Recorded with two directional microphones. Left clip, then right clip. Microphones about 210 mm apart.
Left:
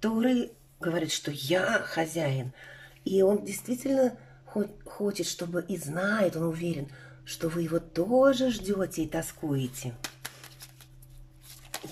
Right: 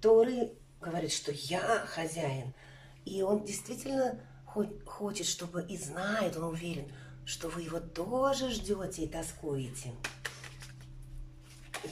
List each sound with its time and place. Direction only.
0.0 s speech: 50° left (ahead or behind)